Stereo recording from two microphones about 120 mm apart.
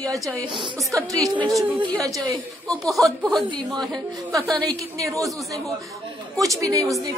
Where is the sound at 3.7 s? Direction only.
35° right (ahead or behind).